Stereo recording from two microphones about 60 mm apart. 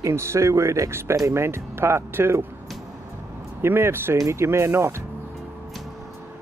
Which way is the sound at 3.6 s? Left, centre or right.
Right.